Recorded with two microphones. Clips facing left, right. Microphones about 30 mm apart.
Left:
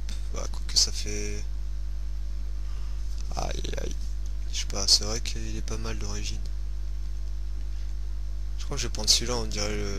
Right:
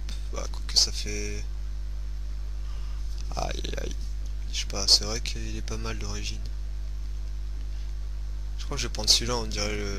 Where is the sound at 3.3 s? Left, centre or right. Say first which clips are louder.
Right 1 dB; centre.